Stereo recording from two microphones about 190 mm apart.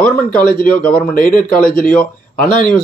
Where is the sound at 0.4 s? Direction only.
50° left (ahead or behind).